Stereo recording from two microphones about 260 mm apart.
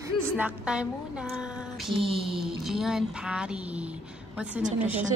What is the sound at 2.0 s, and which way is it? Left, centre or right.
Speech, right.